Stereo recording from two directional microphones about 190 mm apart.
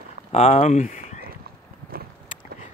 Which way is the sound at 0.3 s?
35° left (ahead or behind).